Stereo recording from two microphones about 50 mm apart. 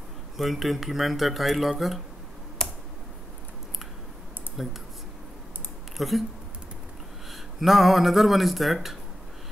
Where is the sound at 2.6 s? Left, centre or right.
Centre.